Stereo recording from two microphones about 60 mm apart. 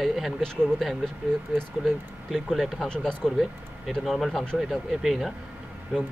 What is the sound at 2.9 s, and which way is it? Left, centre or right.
Speech, centre.